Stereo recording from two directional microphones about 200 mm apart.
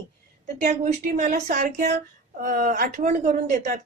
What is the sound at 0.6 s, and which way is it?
A woman's voice, 40° right (ahead or behind).